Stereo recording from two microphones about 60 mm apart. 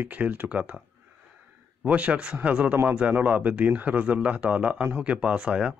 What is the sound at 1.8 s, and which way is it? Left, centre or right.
Speech, right.